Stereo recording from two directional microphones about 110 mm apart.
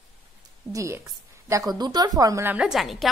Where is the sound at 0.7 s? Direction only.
30° right (ahead or behind).